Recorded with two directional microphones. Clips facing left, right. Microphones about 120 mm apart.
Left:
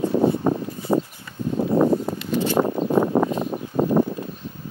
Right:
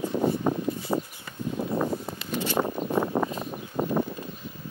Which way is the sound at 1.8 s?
60° left (ahead or behind).